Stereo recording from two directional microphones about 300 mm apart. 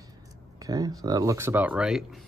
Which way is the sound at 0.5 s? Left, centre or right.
Centre.